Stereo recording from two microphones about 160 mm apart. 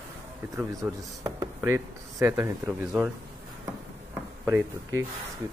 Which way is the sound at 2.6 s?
5° right (ahead or behind).